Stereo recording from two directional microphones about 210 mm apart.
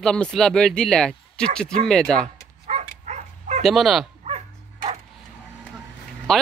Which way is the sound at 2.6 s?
35° right (ahead or behind).